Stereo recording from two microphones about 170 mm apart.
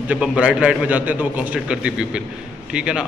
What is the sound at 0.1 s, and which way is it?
A man's voice, 5° right (ahead or behind).